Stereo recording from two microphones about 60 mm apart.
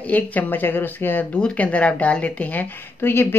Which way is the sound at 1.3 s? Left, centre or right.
Left.